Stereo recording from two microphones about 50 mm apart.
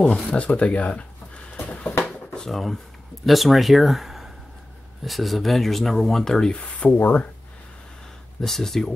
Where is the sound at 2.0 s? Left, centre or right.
Centre.